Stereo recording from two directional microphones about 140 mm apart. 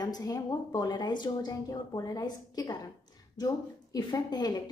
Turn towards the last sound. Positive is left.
turn(degrees=30)  # may be behind; listen again after turning